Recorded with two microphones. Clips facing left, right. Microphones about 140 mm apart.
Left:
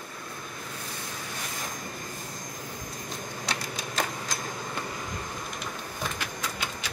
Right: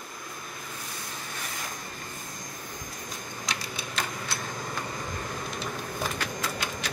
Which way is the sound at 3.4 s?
40° left (ahead or behind).